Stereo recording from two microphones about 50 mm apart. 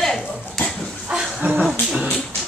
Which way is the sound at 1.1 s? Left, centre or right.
Centre.